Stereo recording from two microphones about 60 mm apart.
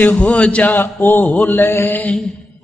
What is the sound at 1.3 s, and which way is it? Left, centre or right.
Mantra, left.